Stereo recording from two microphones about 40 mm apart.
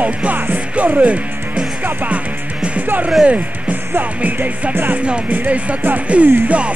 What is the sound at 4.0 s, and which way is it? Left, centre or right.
Music, right.